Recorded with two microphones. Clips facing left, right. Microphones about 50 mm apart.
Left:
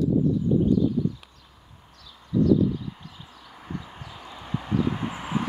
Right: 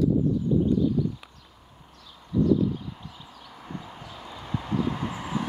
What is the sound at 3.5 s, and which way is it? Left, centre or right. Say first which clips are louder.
Vehicle: left 2 dB; centre.